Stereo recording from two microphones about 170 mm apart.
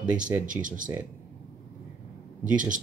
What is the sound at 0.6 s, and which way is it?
Speech, 50° right (ahead or behind).